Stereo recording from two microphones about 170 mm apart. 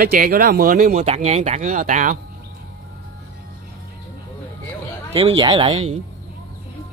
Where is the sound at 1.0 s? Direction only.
40° right (ahead or behind).